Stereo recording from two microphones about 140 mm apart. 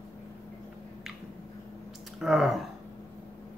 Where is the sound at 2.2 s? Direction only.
Centre (ahead or behind).